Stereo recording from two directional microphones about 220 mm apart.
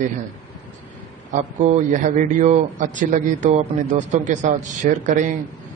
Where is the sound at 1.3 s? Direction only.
30° right (ahead or behind).